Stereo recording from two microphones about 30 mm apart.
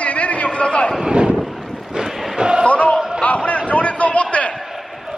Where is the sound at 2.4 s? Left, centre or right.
Right.